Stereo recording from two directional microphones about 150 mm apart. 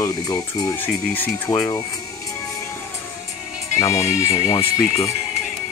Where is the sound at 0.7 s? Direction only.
15° left (ahead or behind).